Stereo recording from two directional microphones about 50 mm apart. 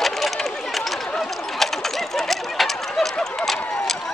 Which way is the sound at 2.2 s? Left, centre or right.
Centre.